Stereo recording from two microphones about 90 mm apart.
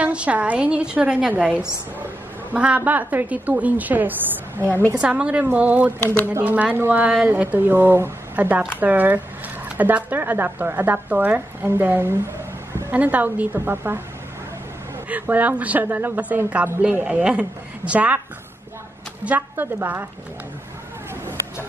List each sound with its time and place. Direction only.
0.0 s speech: 15° right (ahead or behind)
15.0 s speech: 20° right (ahead or behind)
19.2 s speech: 20° right (ahead or behind)